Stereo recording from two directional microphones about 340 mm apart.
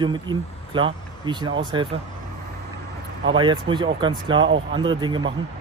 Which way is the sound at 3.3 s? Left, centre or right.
Centre.